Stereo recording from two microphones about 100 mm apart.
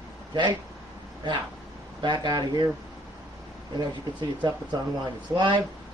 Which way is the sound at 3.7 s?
50° right (ahead or behind).